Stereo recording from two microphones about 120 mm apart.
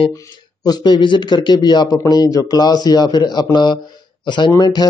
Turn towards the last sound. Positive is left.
turn(degrees=35)  # may be behind; listen again after turning